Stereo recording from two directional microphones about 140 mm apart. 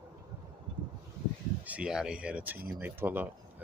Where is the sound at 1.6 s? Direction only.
10° right (ahead or behind).